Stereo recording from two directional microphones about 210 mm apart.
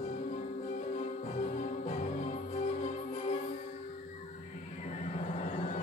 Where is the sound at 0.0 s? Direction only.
35° left (ahead or behind).